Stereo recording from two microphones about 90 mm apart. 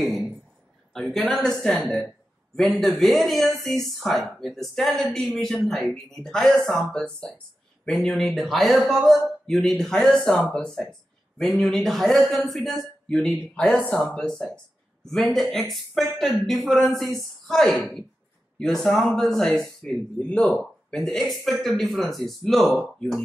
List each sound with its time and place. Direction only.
0.9 s a woman's voice: 5° left (ahead or behind)
20.9 s speech: 5° left (ahead or behind)